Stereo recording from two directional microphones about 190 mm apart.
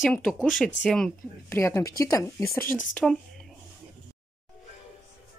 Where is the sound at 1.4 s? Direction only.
15° left (ahead or behind).